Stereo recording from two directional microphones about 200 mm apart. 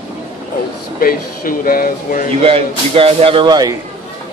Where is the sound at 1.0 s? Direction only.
45° left (ahead or behind).